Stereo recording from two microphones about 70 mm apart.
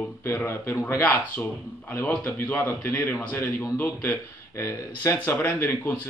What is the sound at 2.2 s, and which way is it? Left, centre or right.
A man's voice, left.